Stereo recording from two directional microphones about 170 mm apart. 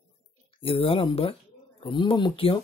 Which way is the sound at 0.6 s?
35° left (ahead or behind).